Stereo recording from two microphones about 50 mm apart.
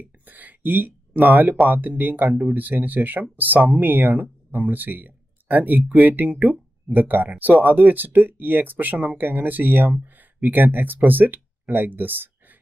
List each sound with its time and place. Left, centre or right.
0.2 s speech: right